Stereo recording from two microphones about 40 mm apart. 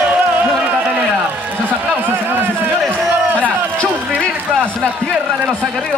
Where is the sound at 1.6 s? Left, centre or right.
Right.